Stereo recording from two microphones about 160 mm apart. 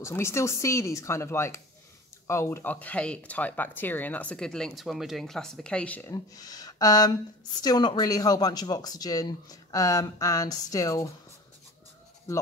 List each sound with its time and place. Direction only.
0.0 s speech: 15° left (ahead or behind)
6.1 s speech: 25° left (ahead or behind)